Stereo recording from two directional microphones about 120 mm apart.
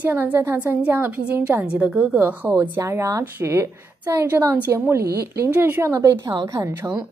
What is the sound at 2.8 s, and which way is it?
A woman's voice, 25° right (ahead or behind).